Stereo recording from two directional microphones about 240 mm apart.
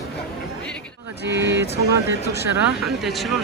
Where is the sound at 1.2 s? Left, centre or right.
Right.